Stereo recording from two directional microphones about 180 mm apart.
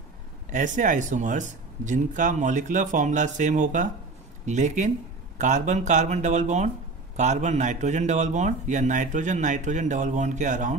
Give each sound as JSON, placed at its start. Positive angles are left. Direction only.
{"t": 0.5, "sound": "speech", "side_deg": -45}